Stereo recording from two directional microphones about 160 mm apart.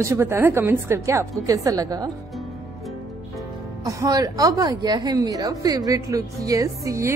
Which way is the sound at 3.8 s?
20° right (ahead or behind).